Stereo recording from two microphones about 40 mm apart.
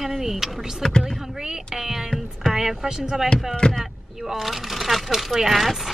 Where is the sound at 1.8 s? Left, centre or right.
Centre.